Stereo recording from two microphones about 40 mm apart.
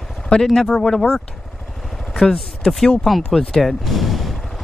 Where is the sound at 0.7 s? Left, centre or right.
Centre.